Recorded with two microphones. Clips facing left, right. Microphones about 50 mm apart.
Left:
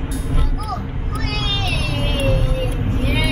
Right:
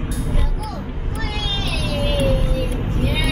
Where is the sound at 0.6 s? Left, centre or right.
Left.